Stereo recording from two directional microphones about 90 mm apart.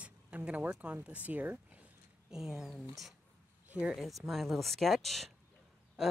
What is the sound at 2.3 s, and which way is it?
Speech, 5° right (ahead or behind).